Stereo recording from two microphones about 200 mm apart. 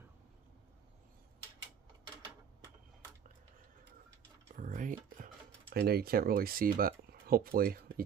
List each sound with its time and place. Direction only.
4.6 s typing: 40° right (ahead or behind)